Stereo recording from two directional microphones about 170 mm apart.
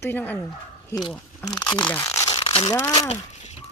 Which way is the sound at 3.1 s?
40° left (ahead or behind).